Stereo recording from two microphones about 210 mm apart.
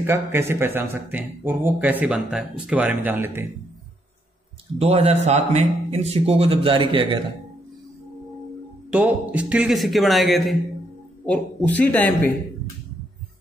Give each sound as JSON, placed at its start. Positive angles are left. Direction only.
{"t": 0.0, "sound": "speech", "side_deg": -10}
{"t": 4.7, "sound": "a man's voice", "side_deg": -30}
{"t": 8.9, "sound": "a man's voice", "side_deg": -5}